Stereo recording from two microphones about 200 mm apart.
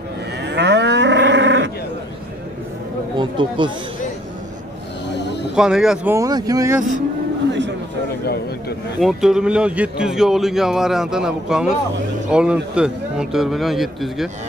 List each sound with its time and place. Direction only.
0.4 s moo: 60° right (ahead or behind)
3.2 s speech: 25° right (ahead or behind)
5.1 s a sound: 60° left (ahead or behind)
5.5 s speech: 5° right (ahead or behind)
6.1 s speech: 20° right (ahead or behind)
9.0 s speech: 5° right (ahead or behind)